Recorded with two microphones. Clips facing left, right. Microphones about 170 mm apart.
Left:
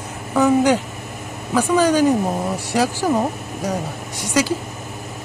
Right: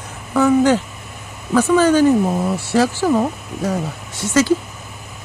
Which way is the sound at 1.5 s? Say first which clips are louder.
Right 3 dB; 10° left (ahead or behind).